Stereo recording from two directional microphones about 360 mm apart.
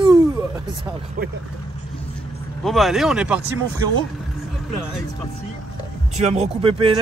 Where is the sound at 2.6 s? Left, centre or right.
Centre.